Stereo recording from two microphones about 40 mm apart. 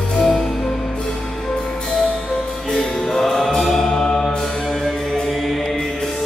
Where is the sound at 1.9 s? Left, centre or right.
Centre.